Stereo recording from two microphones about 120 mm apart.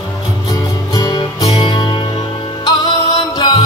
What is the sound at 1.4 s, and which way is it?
Music, 50° left (ahead or behind).